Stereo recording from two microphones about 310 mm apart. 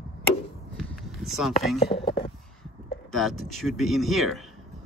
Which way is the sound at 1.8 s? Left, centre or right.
Centre.